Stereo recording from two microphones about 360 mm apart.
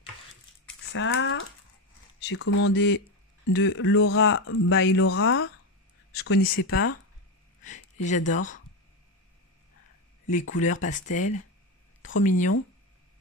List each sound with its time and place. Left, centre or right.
0.9 s speech: left
7.6 s speech: centre
10.5 s speech: left